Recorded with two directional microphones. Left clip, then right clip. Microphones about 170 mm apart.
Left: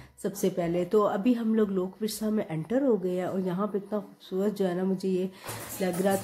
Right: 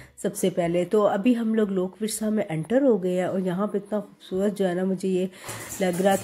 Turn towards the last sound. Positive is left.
turn(degrees=-20)  # may be behind; listen again after turning